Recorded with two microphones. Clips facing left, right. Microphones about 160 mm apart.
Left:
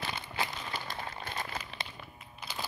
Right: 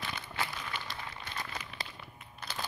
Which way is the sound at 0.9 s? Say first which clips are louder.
Left 3 dB; 40° left (ahead or behind).